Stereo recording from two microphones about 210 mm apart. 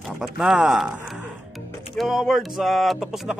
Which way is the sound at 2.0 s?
Centre (ahead or behind).